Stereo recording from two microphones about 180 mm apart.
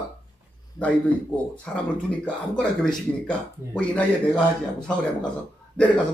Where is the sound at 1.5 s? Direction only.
5° left (ahead or behind).